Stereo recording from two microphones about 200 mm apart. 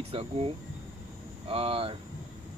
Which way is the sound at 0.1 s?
30° right (ahead or behind).